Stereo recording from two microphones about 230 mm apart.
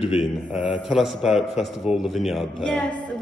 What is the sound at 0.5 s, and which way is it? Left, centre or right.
A man's voice, centre.